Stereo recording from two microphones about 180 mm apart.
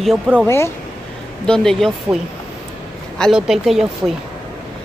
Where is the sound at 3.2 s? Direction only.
Centre (ahead or behind).